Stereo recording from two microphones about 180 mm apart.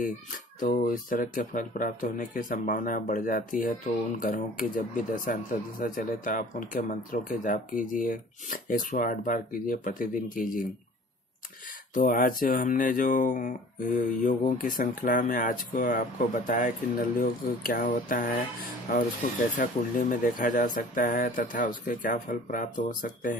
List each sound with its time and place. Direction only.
0.6 s speech: 50° left (ahead or behind)
11.9 s speech: 50° left (ahead or behind)
19.5 s speech: 45° left (ahead or behind)